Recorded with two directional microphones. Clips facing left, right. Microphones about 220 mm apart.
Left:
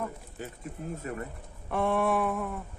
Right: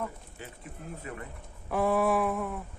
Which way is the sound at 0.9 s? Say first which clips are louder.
Left 3 dB; 45° left (ahead or behind).